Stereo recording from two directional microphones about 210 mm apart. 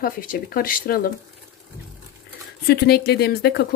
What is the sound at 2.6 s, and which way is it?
Speech, 50° left (ahead or behind).